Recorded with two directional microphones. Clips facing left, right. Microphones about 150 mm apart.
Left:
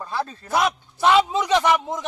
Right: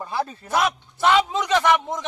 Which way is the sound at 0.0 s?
15° right (ahead or behind).